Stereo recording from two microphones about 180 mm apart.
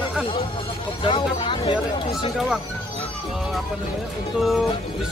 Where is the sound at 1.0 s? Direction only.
30° left (ahead or behind).